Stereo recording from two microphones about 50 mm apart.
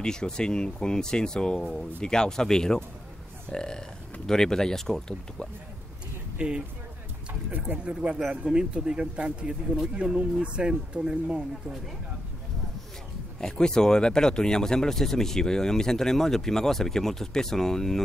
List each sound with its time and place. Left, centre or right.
0.0 s speech: centre
6.3 s speech: centre
7.5 s speech: right
8.2 s speech: centre
13.4 s speech: centre